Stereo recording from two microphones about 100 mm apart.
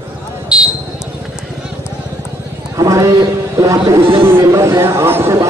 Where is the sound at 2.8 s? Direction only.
30° right (ahead or behind).